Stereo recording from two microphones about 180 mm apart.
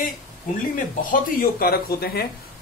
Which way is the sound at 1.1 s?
55° left (ahead or behind).